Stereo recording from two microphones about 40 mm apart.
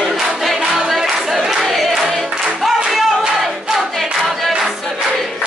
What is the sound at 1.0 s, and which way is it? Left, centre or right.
Crowd, centre.